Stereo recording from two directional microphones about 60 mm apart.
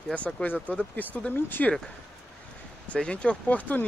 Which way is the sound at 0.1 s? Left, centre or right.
Left.